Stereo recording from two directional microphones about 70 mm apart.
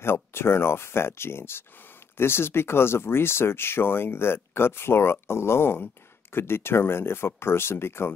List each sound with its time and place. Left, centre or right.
0.0 s speech: left